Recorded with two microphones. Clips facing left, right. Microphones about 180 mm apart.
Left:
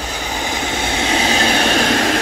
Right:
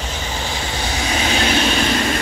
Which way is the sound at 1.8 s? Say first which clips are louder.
Left 3 dB; 70° left (ahead or behind).